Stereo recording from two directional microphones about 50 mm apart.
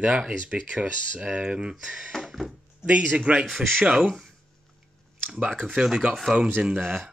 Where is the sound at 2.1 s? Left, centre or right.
Centre.